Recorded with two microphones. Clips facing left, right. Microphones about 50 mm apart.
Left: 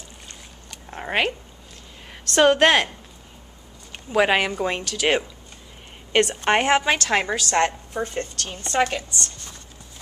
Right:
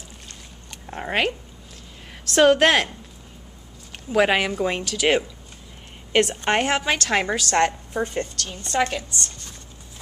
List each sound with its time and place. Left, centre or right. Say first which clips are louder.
0.8 s a sound: even; centre
2.2 s a woman's voice: even; centre
3.9 s a woman's voice: even; centre
7.9 s a woman's voice: right 2 dB; centre
8.4 s a woman's voice: left 1 dB; left
8.7 s a woman's voice: left 1 dB; centre